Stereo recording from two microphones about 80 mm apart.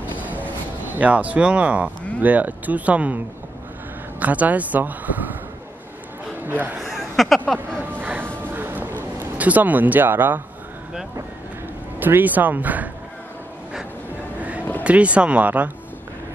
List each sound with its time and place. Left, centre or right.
0.9 s speech: centre
4.2 s speech: centre
6.4 s speech: right
6.9 s a sound: centre
7.9 s music: right
9.2 s speech: centre
12.0 s speech: right
14.8 s speech: centre